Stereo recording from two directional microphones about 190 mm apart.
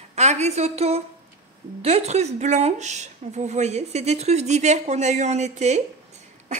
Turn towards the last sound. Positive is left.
turn(degrees=-35)  # may be behind; listen again after turning